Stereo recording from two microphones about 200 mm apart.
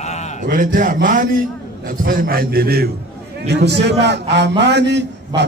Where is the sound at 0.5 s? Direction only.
40° right (ahead or behind); by 5.1 s 60° right (ahead or behind).